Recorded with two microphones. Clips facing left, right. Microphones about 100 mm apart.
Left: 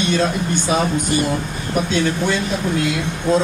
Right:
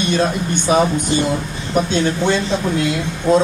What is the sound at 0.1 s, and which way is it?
Speech, 25° right (ahead or behind).